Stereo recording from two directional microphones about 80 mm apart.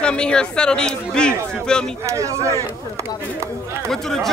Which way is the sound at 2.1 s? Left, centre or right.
Right.